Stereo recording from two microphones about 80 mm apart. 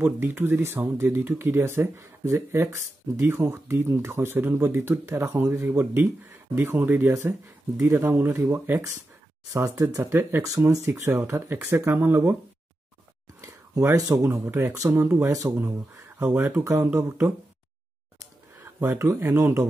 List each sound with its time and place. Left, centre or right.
0.0 s speech: right
9.5 s speech: right
13.4 s a sound: right
14.3 s speech: right
15.2 s speech: right
16.2 s speech: right
18.6 s speech: right